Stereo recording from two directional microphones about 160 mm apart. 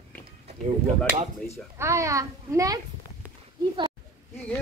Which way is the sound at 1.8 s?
20° right (ahead or behind).